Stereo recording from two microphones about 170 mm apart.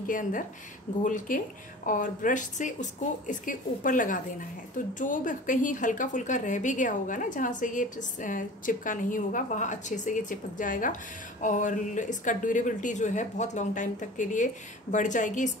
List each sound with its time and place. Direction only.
0.0 s a woman's voice: 50° left (ahead or behind)